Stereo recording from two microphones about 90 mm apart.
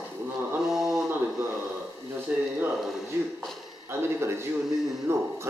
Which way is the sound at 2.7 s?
Centre (ahead or behind).